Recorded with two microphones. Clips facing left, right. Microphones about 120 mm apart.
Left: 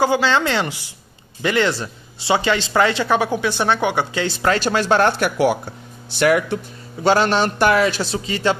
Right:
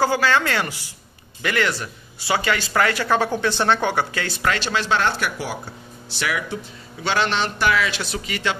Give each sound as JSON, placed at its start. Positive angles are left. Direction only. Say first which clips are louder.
{"t": 0.0, "sound": "speech", "louder": "left 2 dB", "side_deg": 20}
{"t": 4.6, "sound": "speech", "louder": "left 5 dB", "side_deg": 45}